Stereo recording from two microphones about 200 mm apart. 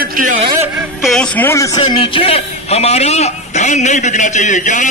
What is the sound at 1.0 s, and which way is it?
A man's voice, 5° left (ahead or behind).